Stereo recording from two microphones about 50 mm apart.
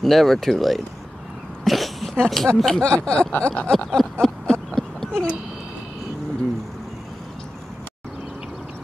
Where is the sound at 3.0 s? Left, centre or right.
Centre.